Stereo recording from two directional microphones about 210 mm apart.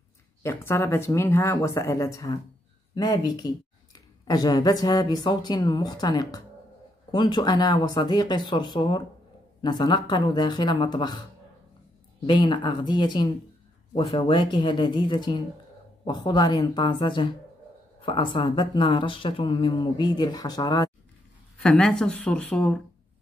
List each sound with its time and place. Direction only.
0.4 s speech: 10° left (ahead or behind)
12.3 s speech: 20° left (ahead or behind)
21.5 s speech: 5° left (ahead or behind)